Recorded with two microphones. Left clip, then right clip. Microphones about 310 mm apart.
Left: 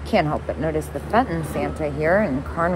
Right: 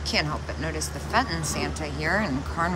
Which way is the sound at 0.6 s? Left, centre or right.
Centre.